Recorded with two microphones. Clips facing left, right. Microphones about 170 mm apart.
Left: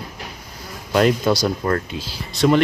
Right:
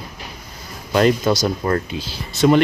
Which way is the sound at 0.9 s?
Centre (ahead or behind).